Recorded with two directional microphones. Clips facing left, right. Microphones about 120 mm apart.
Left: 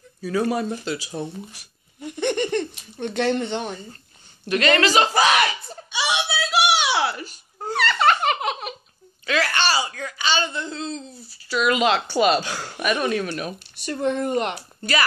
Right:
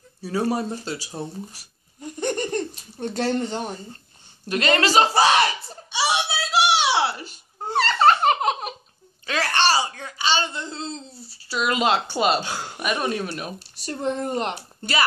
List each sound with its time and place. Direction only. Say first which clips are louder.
0.2 s speech: left 1 dB; 30° right (ahead or behind)
4.5 s a sound: left 2 dB; 30° right (ahead or behind)
9.2 s speech: even; 30° right (ahead or behind)